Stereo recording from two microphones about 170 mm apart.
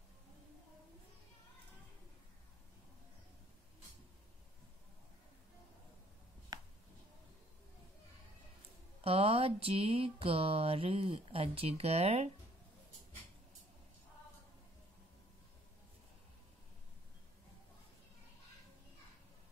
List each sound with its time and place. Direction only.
6.5 s finger snapping: 25° right (ahead or behind)
9.0 s speech: 35° right (ahead or behind)